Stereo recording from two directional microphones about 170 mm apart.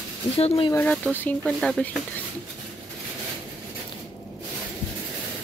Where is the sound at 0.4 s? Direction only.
30° left (ahead or behind).